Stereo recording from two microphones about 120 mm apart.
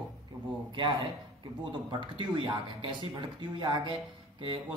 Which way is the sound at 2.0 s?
45° right (ahead or behind).